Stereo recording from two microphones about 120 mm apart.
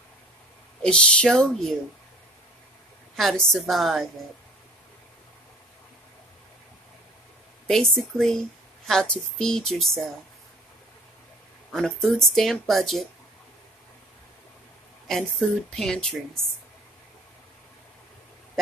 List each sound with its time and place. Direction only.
0.8 s speech: 10° left (ahead or behind)
3.2 s a woman's voice: centre (ahead or behind)
7.6 s a woman's voice: 5° left (ahead or behind)
11.7 s a woman's voice: 5° left (ahead or behind)
15.0 s a woman's voice: 5° left (ahead or behind)